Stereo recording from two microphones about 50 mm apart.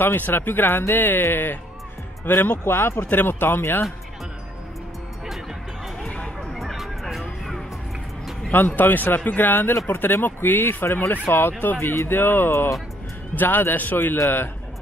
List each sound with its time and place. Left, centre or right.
0.0 s a man's voice: left
2.6 s speech: left
6.0 s a sound: left
6.5 s music: centre
8.5 s a man's voice: left
13.3 s a man's voice: left